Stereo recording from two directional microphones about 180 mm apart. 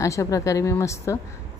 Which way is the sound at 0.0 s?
15° left (ahead or behind).